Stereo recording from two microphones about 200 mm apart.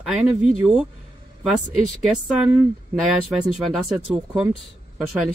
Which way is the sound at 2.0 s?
Centre (ahead or behind).